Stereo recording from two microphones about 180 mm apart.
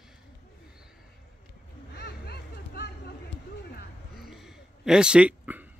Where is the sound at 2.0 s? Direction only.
65° left (ahead or behind).